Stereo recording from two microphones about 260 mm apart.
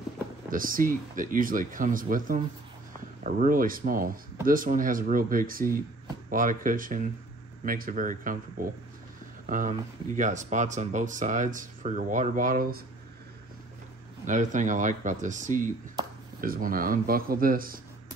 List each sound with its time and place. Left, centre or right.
0.5 s speech: right
14.2 s speech: right